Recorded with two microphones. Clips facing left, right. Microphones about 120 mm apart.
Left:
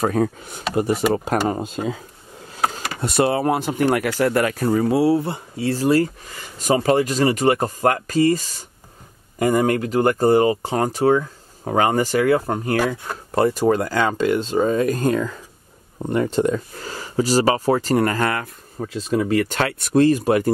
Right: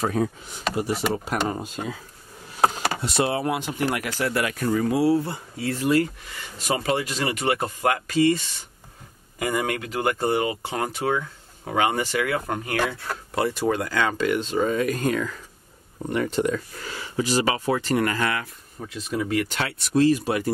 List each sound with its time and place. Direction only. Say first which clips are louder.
0.0 s speech: left 4 dB; 50° left (ahead or behind)
1.5 s speech: left 6 dB; 25° left (ahead or behind)
2.6 s a sound: right 2 dB; 30° right (ahead or behind)
3.0 s speech: left 7 dB; 50° left (ahead or behind)
12.8 s speech: left 4 dB; 20° left (ahead or behind)
13.3 s speech: left 6 dB; 40° left (ahead or behind)